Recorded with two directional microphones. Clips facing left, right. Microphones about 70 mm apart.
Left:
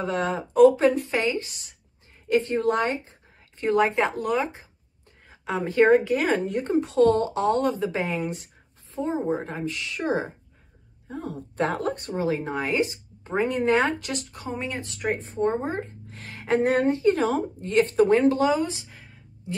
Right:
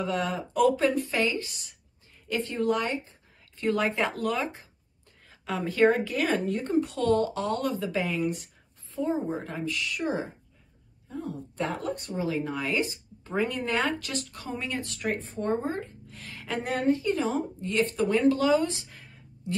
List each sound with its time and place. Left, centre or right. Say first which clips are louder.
0.0 s speech: left 3 dB; left
5.3 s a sound: left 4 dB; centre
5.7 s a woman's voice: left 5 dB; left
11.1 s speech: left 2 dB; left
12.3 s speech: left 3 dB; left
18.5 s speech: even; centre